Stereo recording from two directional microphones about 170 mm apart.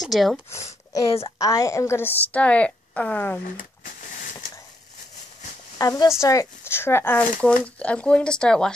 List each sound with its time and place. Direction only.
0.0 s speech: centre (ahead or behind)
1.2 s speech: 20° left (ahead or behind)
5.8 s speech: 20° left (ahead or behind); by 8.7 s 5° left (ahead or behind)